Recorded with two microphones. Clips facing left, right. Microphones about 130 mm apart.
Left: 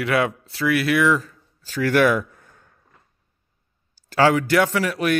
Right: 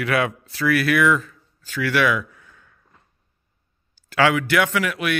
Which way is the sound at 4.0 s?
40° left (ahead or behind).